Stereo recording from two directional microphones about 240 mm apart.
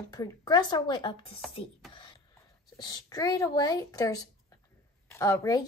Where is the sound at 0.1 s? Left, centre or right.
Centre.